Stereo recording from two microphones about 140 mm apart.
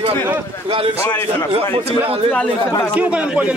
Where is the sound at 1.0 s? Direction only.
15° left (ahead or behind).